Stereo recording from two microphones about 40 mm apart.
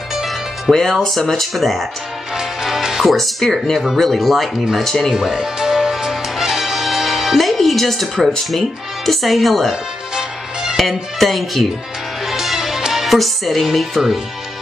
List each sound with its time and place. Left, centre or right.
0.1 s music: centre
0.7 s speech: centre
2.3 s music: centre
3.1 s speech: centre
5.1 s music: centre
7.3 s music: centre
8.5 s speech: centre
10.1 s music: centre
10.8 s speech: centre
12.3 s music: centre